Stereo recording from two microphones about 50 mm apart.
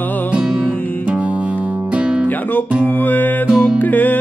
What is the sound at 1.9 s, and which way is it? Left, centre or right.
Music, right.